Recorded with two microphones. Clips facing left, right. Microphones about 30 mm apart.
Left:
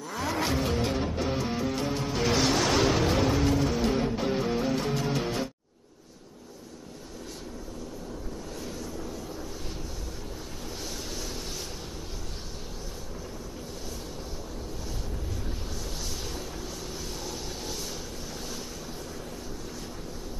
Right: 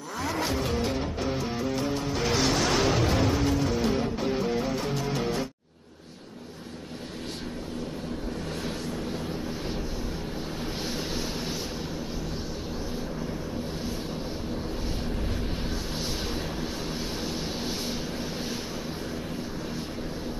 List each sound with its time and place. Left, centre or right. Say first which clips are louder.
0.1 s vehicle: even; centre
2.1 s music: left 1 dB; centre
10.8 s vehicle: right 4 dB; right
17.2 s vehicle: right 5 dB; right